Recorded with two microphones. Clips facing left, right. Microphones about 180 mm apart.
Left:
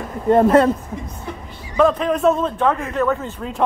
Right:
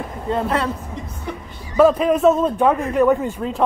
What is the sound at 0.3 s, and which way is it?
Speech, 50° left (ahead or behind).